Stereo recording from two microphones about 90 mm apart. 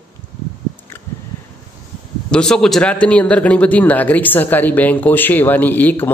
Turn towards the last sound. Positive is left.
turn(degrees=20)  # may be behind; listen again after turning